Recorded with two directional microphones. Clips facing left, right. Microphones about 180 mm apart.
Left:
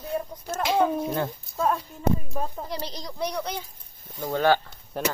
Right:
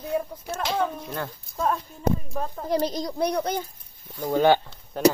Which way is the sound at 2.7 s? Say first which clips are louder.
Right 9 dB; 45° right (ahead or behind).